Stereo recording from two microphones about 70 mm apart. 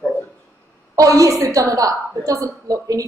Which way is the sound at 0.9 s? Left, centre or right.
Right.